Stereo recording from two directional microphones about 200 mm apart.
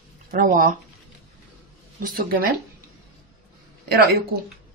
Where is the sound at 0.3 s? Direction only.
45° right (ahead or behind).